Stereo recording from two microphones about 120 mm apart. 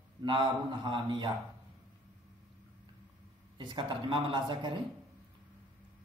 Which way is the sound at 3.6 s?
40° right (ahead or behind).